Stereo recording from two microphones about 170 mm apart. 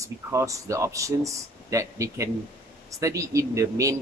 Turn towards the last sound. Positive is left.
turn(degrees=-20)  # may be behind; listen again after turning